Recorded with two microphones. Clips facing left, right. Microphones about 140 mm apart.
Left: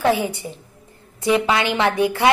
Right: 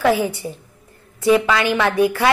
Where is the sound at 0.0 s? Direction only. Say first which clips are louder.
Right 2 dB; 20° left (ahead or behind).